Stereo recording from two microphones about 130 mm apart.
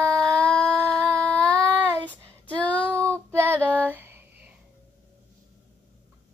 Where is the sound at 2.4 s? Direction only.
10° left (ahead or behind).